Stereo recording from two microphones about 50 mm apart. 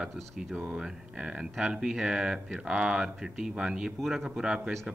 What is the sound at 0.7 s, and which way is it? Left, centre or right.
Speech, centre.